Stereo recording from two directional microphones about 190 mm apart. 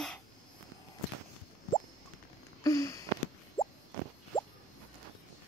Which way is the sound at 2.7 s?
20° left (ahead or behind).